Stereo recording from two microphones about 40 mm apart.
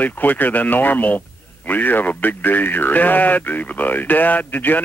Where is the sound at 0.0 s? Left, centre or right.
Left.